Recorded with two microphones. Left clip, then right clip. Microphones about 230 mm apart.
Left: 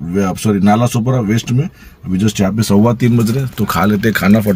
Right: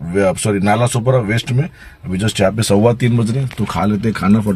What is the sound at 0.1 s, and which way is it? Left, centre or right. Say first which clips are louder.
A man's voice: right 2 dB; centre.